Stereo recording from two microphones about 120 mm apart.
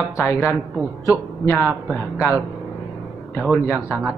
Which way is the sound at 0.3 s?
20° left (ahead or behind).